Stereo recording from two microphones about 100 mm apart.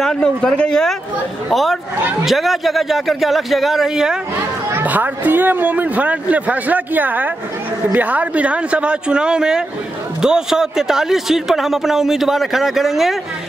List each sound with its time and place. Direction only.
0.0 s a man's voice: 5° left (ahead or behind)
4.7 s a man's voice: 15° right (ahead or behind)